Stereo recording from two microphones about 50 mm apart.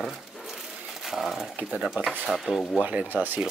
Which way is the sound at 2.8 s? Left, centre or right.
Right.